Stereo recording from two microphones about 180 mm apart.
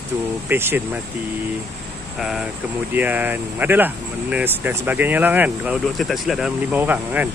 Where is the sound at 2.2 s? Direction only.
5° right (ahead or behind).